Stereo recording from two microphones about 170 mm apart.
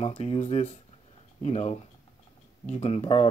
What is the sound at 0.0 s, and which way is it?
Speech, 35° left (ahead or behind).